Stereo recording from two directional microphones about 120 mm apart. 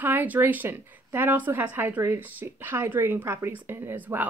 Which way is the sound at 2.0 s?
25° right (ahead or behind).